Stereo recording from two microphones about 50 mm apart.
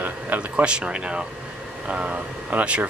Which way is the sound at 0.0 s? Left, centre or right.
Right.